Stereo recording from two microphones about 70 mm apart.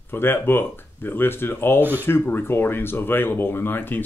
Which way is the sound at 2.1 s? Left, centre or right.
Left.